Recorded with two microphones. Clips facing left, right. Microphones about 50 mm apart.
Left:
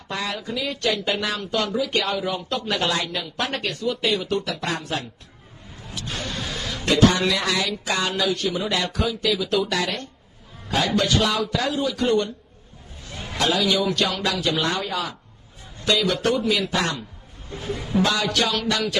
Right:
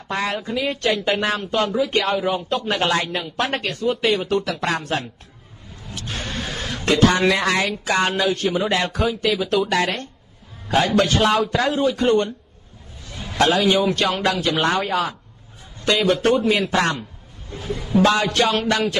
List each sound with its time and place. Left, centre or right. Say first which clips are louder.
0.1 s speech: right 4 dB; right
2.6 s a man's voice: right 2 dB; right
13.4 s speech: right 4 dB; right
18.0 s speech: right 5 dB; right